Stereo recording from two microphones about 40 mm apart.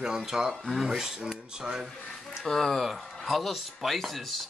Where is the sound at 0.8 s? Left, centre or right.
Centre.